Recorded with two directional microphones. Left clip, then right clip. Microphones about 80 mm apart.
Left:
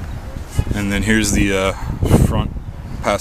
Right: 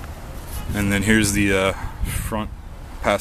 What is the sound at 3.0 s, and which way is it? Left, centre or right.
Speech, centre.